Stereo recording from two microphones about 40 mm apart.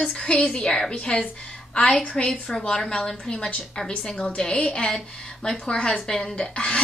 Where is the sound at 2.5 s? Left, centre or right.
Centre.